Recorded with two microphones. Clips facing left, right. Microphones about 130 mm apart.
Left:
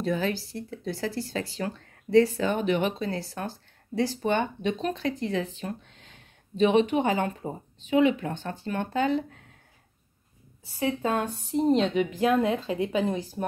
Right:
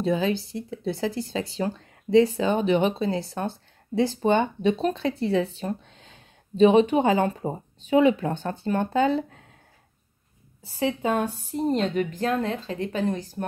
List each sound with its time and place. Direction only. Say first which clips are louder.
0.0 s speech: right 4 dB; 25° right (ahead or behind)
4.6 s speech: right 5 dB; 35° right (ahead or behind)
10.8 s speech: right 2 dB; 25° right (ahead or behind)
11.1 s a woman's voice: right 2 dB; 5° right (ahead or behind)